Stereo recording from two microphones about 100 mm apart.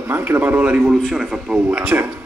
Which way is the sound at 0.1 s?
20° right (ahead or behind).